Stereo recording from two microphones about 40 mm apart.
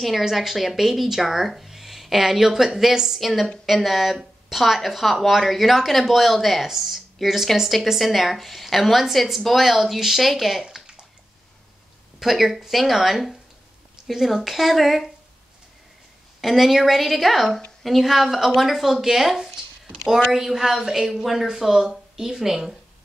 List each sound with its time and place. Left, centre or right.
0.2 s a woman's voice: centre
10.6 s bathtub: centre
12.2 s a woman's voice: centre
16.3 s a woman's voice: centre